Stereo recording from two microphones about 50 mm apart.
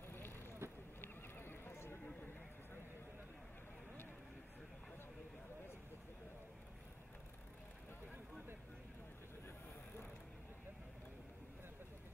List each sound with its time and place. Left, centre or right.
0.6 s vehicle: right
1.0 s horse: left